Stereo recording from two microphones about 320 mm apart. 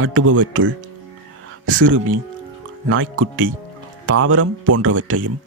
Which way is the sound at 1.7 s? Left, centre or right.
Right.